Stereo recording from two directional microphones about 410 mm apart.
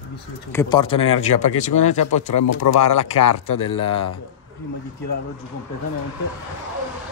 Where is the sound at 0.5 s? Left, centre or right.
Centre.